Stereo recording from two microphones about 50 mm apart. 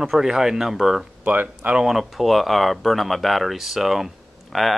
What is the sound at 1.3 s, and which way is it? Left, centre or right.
Speech, right.